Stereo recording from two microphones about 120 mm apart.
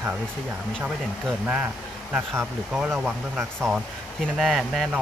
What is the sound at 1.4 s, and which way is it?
Speech, 15° right (ahead or behind).